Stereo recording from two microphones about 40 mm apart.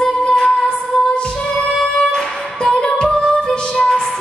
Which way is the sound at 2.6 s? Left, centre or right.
Centre.